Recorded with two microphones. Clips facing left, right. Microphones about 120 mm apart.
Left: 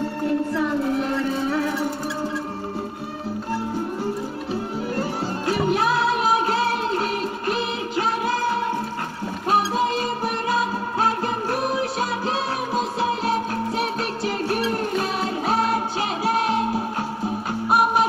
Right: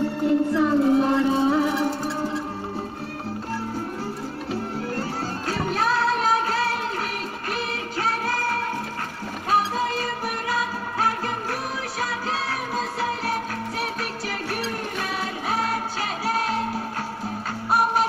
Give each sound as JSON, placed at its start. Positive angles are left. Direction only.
{"t": 0.3, "sound": "music", "side_deg": -20}
{"t": 0.7, "sound": "music", "side_deg": -30}
{"t": 5.5, "sound": "music", "side_deg": 15}
{"t": 8.3, "sound": "music", "side_deg": 20}
{"t": 12.7, "sound": "music", "side_deg": 20}